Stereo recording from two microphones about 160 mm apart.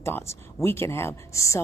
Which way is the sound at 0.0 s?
15° left (ahead or behind).